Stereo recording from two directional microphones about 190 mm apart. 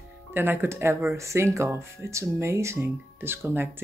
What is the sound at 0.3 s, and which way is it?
Speech, 10° right (ahead or behind).